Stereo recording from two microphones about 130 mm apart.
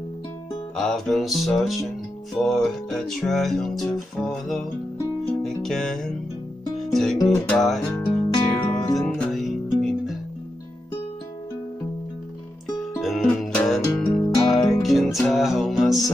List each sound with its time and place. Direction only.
0.7 s music: 5° left (ahead or behind)
8.4 s music: 40° left (ahead or behind)
9.0 s music: 5° left (ahead or behind)
13.0 s music: centre (ahead or behind)
14.0 s music: 30° left (ahead or behind)
14.5 s music: centre (ahead or behind)